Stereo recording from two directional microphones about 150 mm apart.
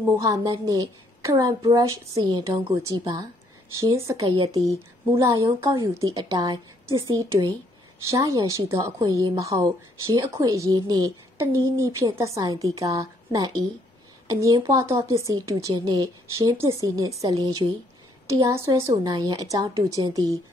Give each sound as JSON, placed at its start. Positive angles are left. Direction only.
{"t": 0.2, "sound": "a woman's voice", "side_deg": -20}
{"t": 3.7, "sound": "a woman's voice", "side_deg": -20}